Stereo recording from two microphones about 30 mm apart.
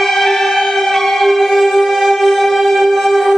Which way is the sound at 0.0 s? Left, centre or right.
Centre.